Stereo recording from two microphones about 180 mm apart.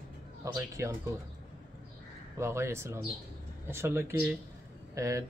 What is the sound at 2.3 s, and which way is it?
Speech, 15° right (ahead or behind).